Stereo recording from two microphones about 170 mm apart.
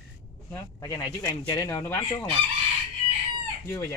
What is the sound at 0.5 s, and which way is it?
Speech, 15° left (ahead or behind).